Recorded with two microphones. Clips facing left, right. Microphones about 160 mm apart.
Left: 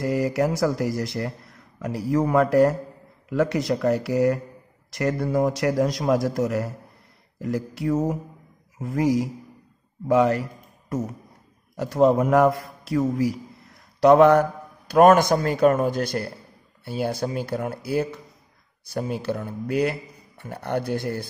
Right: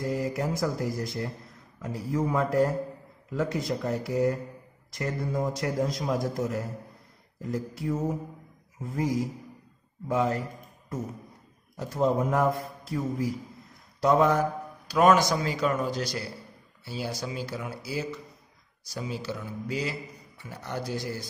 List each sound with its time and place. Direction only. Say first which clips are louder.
0.0 s a man's voice: left 7 dB; 75° left (ahead or behind)
10.9 s a man's voice: left 6 dB; 85° left
14.0 s speech: left 8 dB; 70° left (ahead or behind)